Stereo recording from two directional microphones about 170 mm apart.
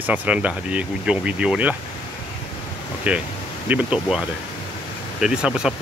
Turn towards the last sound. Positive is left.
turn(degrees=-5)  # may be behind; listen again after turning